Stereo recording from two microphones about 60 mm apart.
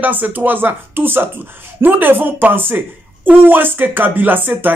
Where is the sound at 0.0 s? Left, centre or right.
Right.